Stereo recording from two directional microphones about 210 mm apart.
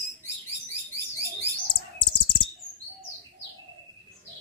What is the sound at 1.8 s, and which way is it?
Chirp, 20° left (ahead or behind).